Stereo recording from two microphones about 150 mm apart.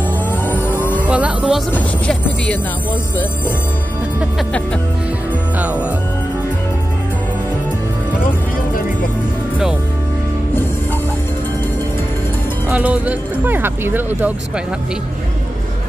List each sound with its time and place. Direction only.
0.3 s vehicle: 15° left (ahead or behind)
1.0 s speech: 10° right (ahead or behind)
1.7 s music: 10° left (ahead or behind)
5.6 s music: 10° right (ahead or behind)
12.6 s speech: 10° right (ahead or behind)